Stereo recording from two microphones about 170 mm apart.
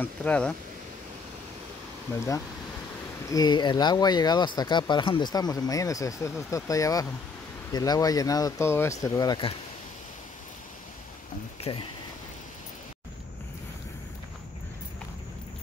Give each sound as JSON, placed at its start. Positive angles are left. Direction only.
{"t": 0.0, "sound": "speech", "side_deg": 10}
{"t": 2.1, "sound": "speech", "side_deg": 20}
{"t": 11.7, "sound": "speech", "side_deg": 35}